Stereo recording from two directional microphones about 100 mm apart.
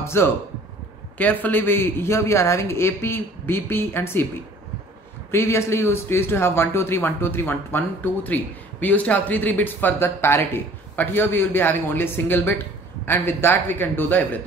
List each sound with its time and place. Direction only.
0.0 s a man's voice: 25° left (ahead or behind)
5.3 s speech: 25° left (ahead or behind)